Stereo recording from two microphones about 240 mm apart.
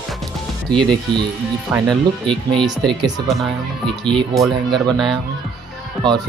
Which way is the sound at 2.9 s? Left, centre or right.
Centre.